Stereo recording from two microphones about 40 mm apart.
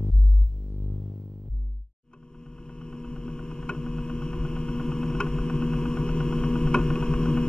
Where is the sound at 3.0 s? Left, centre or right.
Left.